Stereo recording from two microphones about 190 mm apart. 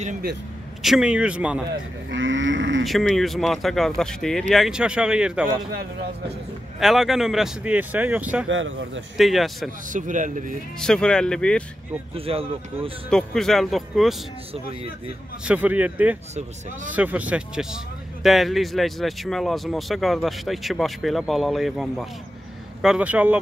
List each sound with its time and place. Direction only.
0.8 s speech: 5° right (ahead or behind)
2.0 s livestock: 80° right
2.8 s speech: centre (ahead or behind)
6.8 s speech: centre (ahead or behind)
8.5 s livestock: 90° right
9.1 s speech: centre (ahead or behind)
9.8 s a man's voice: 40° right (ahead or behind)
10.8 s speech: 5° left (ahead or behind)
12.2 s speech: 30° right (ahead or behind)
13.1 s speech: centre (ahead or behind)
15.4 s speech: 10° right (ahead or behind)